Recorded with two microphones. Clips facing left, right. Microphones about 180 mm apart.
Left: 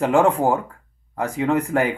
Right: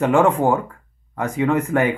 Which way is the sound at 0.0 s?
30° left (ahead or behind).